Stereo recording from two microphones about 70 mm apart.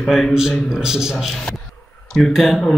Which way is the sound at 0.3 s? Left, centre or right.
Centre.